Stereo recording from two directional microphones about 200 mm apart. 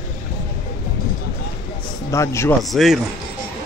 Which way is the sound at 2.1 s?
15° left (ahead or behind).